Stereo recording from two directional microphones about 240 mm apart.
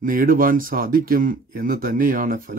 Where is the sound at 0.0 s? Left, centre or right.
Right.